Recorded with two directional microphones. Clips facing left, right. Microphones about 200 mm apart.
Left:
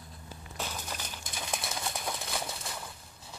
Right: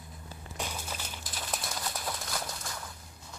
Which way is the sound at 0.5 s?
10° right (ahead or behind).